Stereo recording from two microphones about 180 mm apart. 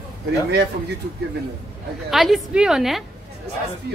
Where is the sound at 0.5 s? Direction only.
65° right (ahead or behind).